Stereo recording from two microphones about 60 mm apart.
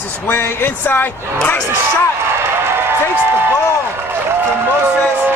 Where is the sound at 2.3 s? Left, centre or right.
Right.